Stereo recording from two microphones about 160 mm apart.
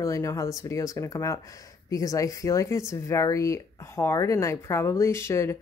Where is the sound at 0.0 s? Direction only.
20° left (ahead or behind).